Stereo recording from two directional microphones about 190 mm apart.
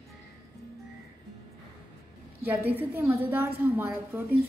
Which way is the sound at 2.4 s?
10° right (ahead or behind).